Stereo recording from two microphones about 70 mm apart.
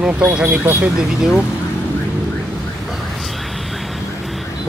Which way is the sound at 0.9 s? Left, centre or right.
Centre.